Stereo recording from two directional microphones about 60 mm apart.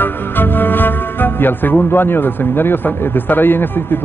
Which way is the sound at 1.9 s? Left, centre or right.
Left.